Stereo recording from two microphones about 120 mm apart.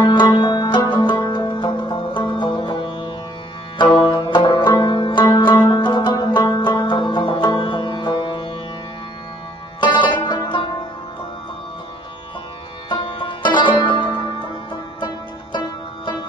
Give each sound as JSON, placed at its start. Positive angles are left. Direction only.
{"t": 0.0, "sound": "music", "side_deg": 40}
{"t": 3.7, "sound": "banjo", "side_deg": 45}
{"t": 9.8, "sound": "music", "side_deg": 40}
{"t": 12.9, "sound": "music", "side_deg": 45}